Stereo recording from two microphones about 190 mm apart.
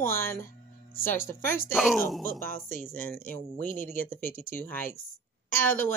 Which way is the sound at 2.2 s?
50° left (ahead or behind).